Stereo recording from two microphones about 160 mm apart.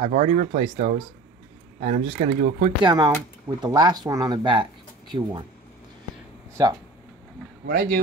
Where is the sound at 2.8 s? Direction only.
25° right (ahead or behind).